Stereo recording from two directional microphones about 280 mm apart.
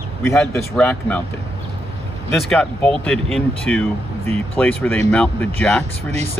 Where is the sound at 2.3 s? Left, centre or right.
Centre.